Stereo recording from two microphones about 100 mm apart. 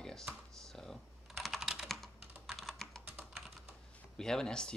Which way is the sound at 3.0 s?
20° right (ahead or behind).